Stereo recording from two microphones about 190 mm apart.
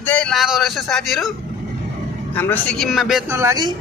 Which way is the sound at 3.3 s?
20° right (ahead or behind).